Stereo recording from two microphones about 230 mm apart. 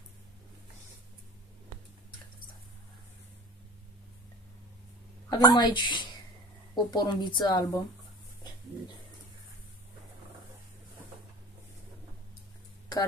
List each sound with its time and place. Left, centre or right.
5.3 s speech: centre